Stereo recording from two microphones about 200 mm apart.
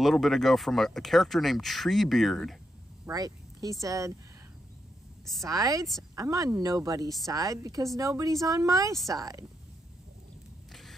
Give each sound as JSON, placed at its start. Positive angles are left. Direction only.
{"t": 0.0, "sound": "speech", "side_deg": 0}
{"t": 3.1, "sound": "speech", "side_deg": -15}
{"t": 5.4, "sound": "speech", "side_deg": -15}
{"t": 10.7, "sound": "a sound", "side_deg": 0}